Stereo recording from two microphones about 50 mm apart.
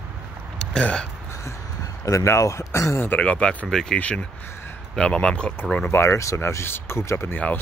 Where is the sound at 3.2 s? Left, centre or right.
Left.